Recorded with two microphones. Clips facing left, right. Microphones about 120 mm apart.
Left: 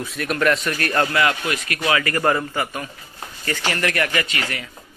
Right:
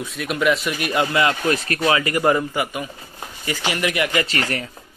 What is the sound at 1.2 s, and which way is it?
Speech, 35° right (ahead or behind).